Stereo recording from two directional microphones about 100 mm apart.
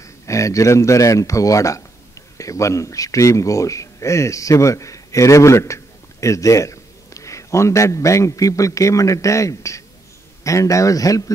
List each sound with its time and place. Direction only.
0.0 s a man's voice: 30° left (ahead or behind)